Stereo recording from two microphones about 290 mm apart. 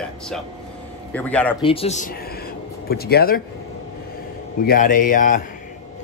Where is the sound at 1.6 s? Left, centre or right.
Centre.